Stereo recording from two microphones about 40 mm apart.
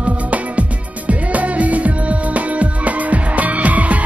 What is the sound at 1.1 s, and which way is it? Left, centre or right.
Music, right.